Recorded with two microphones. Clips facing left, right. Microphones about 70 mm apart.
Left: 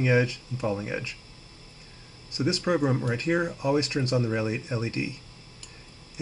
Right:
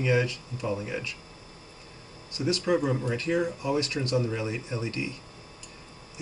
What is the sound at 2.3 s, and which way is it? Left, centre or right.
Speech, left.